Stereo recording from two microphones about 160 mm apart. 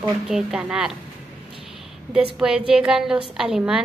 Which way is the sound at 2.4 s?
5° right (ahead or behind).